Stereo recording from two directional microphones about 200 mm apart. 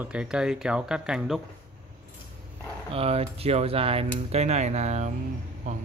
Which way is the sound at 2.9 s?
30° right (ahead or behind).